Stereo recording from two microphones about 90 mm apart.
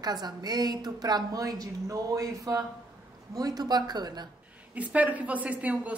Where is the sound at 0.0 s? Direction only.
50° right (ahead or behind).